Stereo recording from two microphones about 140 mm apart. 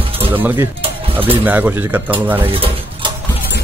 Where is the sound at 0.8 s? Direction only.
40° right (ahead or behind).